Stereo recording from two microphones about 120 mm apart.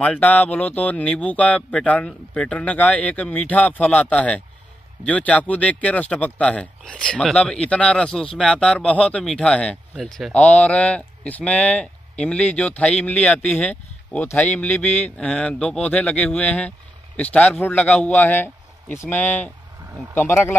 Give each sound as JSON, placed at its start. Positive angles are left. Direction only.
{"t": 0.0, "sound": "speech", "side_deg": 10}